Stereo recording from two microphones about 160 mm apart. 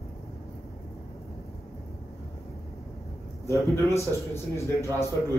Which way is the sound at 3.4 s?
20° left (ahead or behind).